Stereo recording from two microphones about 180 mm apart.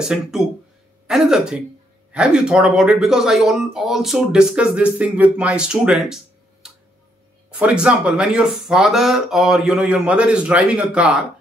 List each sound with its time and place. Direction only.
0.0 s speech: 5° right (ahead or behind)